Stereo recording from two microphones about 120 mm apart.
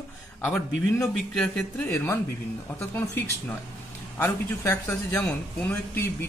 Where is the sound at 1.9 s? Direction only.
20° left (ahead or behind).